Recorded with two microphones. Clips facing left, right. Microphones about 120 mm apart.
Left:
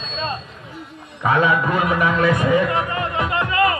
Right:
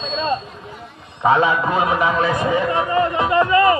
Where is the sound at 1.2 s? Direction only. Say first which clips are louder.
Right 2 dB; 25° right (ahead or behind).